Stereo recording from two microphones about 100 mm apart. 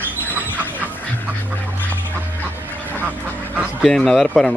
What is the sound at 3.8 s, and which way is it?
Speech, centre (ahead or behind).